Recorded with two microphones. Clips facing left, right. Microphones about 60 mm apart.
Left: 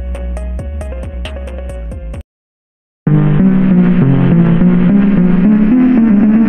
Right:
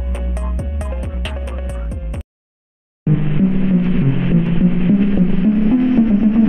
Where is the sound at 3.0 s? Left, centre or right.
Left.